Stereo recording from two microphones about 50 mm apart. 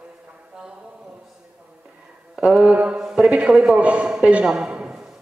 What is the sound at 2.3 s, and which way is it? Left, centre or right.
Mantra, centre.